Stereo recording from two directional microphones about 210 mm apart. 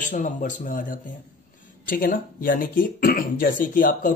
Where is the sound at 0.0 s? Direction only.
40° left (ahead or behind).